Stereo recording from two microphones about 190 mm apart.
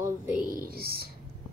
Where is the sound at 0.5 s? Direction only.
50° right (ahead or behind).